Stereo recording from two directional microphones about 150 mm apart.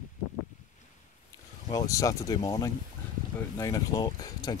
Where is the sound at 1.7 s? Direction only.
25° left (ahead or behind).